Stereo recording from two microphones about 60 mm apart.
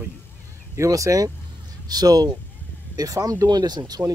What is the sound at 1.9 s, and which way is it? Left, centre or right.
Speech, right.